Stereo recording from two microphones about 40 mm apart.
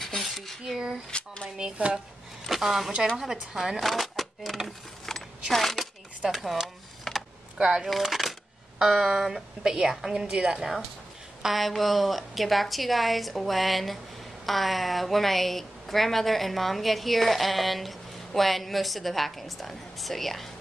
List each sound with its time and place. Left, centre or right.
0.0 s dishes: centre
0.7 s speech: centre
1.1 s a sound: left
1.6 s speech: right
2.4 s a woman's voice: centre
3.8 s speech: centre
5.1 s a sound: centre
5.5 s shuffling cards: centre
6.2 s a sound: centre
7.8 s a woman's voice: centre
11.4 s speech: centre